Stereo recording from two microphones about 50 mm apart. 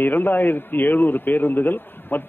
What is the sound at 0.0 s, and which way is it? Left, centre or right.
A man's voice, left.